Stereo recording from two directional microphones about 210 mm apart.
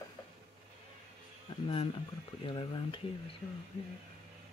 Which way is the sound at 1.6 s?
25° left (ahead or behind).